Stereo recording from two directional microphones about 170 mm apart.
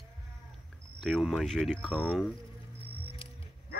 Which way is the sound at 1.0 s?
Centre (ahead or behind).